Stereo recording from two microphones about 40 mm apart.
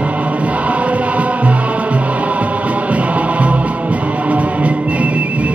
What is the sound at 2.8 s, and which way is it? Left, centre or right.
Music, right.